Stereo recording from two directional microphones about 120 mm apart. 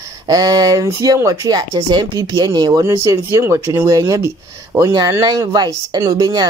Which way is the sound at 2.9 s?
25° right (ahead or behind).